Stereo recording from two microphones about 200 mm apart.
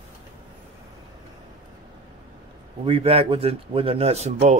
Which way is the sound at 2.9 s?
30° right (ahead or behind).